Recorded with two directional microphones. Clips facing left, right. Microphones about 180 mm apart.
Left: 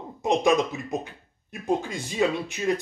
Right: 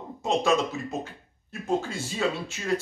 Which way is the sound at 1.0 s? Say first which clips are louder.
Even; 15° left (ahead or behind).